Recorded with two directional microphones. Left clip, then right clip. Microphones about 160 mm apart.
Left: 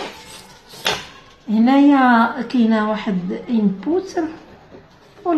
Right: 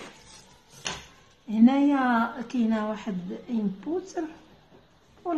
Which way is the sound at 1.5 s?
20° right (ahead or behind).